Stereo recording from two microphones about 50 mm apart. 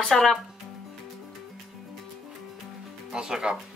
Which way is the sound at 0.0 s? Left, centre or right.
Centre.